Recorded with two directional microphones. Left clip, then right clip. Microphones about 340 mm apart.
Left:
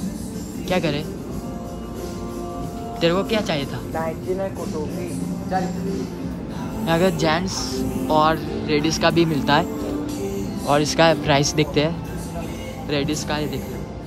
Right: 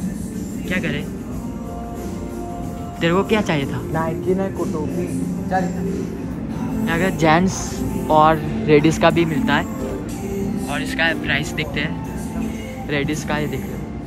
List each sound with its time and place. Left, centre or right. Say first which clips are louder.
3.0 s speech: right 2 dB; centre
6.9 s speech: right 2 dB; centre
10.7 s speech: left 5 dB; centre
12.9 s speech: right 1 dB; centre